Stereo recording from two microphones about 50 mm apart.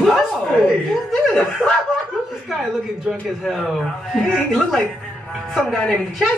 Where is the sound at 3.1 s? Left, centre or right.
Centre.